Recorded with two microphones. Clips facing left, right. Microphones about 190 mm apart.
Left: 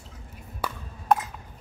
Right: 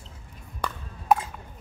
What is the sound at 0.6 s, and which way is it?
Ping, 10° left (ahead or behind).